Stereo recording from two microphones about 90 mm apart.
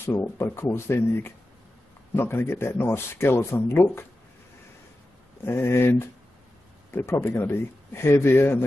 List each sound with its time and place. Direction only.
0.0 s speech: 25° left (ahead or behind)
5.4 s speech: 25° left (ahead or behind)